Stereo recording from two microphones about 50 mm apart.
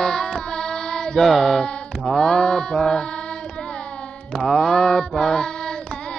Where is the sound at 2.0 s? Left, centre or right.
Centre; by 4.4 s left.